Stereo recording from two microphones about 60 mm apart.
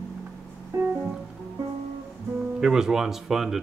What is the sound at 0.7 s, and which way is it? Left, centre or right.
Music, right.